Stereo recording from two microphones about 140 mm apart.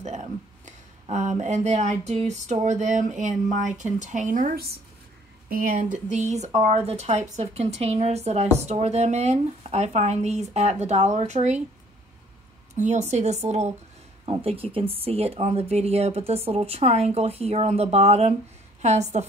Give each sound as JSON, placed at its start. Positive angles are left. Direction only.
{"t": 0.0, "sound": "speech", "side_deg": -55}
{"t": 12.7, "sound": "speech", "side_deg": -55}
{"t": 14.2, "sound": "speech", "side_deg": -40}